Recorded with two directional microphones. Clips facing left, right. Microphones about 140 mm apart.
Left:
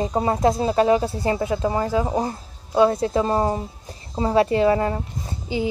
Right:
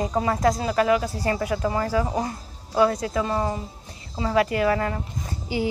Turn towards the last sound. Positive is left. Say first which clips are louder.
# left 1 dB
turn(degrees=20)  # may be behind; listen again after turning